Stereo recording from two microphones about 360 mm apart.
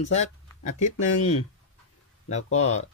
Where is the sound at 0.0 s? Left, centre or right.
Centre.